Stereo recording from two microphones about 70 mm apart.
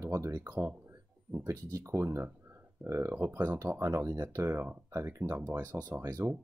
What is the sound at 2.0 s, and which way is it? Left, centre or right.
Speech, right.